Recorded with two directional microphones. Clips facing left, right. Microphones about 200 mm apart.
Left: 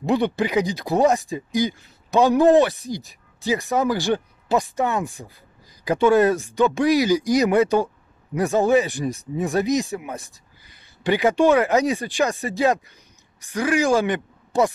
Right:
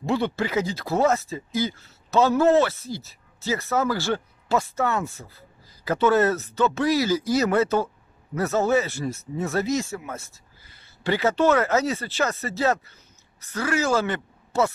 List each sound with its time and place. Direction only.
0.0 s a woman's voice: 15° left (ahead or behind)